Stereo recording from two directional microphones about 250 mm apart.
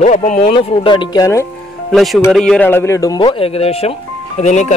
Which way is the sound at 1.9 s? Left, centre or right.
Centre.